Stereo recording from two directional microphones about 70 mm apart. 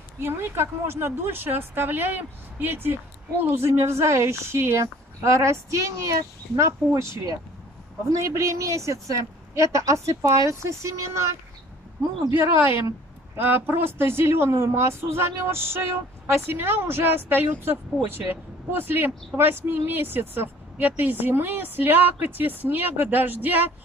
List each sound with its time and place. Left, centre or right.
0.2 s speech: right
8.1 s a woman's voice: right
12.4 s a woman's voice: right